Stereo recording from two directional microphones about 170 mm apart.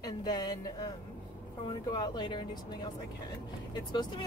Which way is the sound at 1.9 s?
25° left (ahead or behind).